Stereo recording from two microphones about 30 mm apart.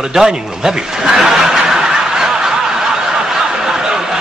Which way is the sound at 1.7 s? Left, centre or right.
Right.